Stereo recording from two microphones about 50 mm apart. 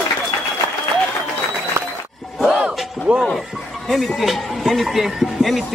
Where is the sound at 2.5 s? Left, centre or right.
Right.